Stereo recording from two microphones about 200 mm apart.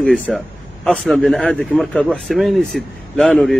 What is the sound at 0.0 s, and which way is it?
Speech, centre (ahead or behind).